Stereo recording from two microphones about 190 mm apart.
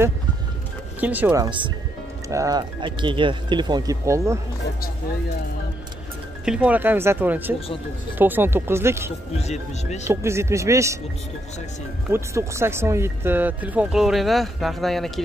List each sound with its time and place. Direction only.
1.0 s speech: 10° right (ahead or behind)
6.4 s speech: 5° right (ahead or behind)
9.4 s speech: 35° left (ahead or behind)
10.0 s speech: 15° right (ahead or behind)
12.1 s speech: 15° right (ahead or behind)